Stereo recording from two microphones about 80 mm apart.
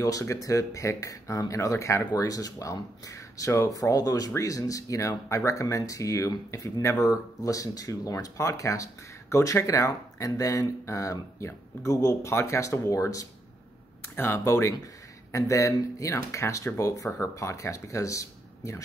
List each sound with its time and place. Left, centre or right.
0.0 s speech: left
14.1 s speech: left